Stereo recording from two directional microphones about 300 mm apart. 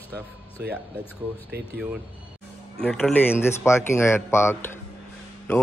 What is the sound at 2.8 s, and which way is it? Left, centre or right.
A man's voice, centre.